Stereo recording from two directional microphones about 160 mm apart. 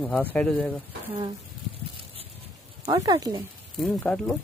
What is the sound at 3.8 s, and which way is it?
Speech, centre (ahead or behind).